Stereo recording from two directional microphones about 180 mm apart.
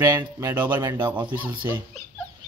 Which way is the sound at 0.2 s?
20° right (ahead or behind).